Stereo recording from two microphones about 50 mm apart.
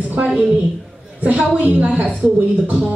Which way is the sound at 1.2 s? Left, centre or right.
Right.